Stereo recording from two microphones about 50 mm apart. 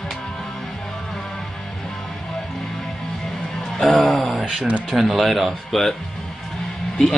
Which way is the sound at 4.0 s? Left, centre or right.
Centre.